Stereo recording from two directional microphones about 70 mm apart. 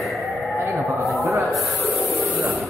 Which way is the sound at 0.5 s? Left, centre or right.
Right.